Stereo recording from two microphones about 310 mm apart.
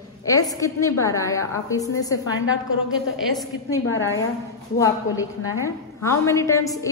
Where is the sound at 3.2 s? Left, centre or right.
Centre.